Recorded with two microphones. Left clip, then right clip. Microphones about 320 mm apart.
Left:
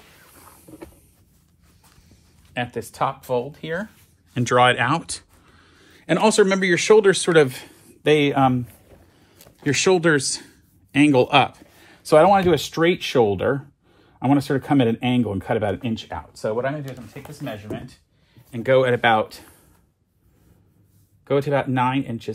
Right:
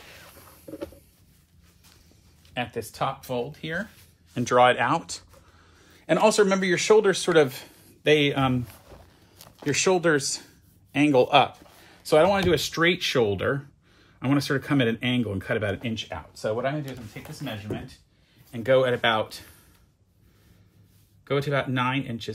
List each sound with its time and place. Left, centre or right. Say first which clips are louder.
0.4 s mechanisms: left 3 dB; centre
2.5 s a man's voice: left 3 dB; left
9.7 s speech: left 4 dB; left
17.4 s speech: left 3 dB; centre
21.2 s speech: left 5 dB; centre